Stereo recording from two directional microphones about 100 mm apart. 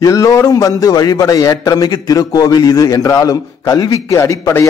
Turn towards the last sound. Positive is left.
turn(degrees=30)  # may be behind; listen again after turning